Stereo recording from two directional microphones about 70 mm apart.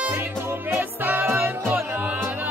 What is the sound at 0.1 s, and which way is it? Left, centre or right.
Music, right.